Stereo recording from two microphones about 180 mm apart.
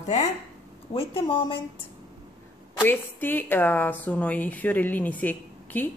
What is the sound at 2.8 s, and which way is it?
Speech, 10° left (ahead or behind).